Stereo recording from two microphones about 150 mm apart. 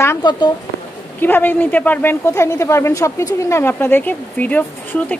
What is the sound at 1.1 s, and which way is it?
A woman's voice, 15° left (ahead or behind).